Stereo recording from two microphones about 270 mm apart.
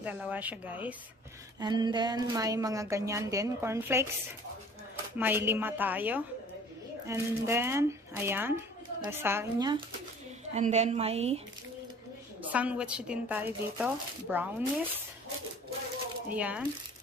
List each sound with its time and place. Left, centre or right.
0.0 s speech: centre
5.1 s speech: centre
10.5 s a woman's voice: right
12.4 s speech: centre
16.3 s speech: centre